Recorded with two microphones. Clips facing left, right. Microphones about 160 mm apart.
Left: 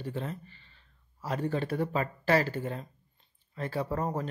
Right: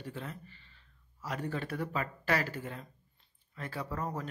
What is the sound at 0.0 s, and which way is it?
Speech, 30° left (ahead or behind).